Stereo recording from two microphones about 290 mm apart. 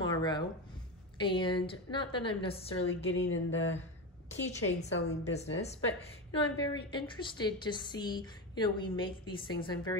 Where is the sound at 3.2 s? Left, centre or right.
Left.